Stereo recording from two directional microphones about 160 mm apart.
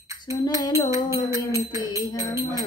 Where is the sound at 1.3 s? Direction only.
20° right (ahead or behind).